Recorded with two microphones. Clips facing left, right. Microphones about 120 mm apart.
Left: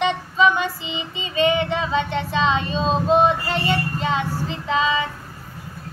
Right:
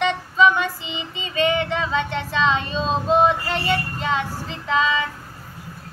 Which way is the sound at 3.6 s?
25° left (ahead or behind).